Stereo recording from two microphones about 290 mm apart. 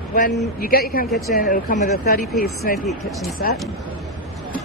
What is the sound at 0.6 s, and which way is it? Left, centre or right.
A woman's voice, left.